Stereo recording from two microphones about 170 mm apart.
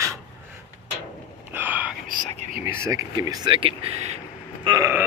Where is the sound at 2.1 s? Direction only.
55° right (ahead or behind).